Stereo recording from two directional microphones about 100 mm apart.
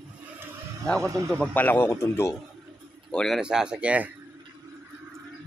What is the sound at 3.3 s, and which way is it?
Speech, 10° right (ahead or behind).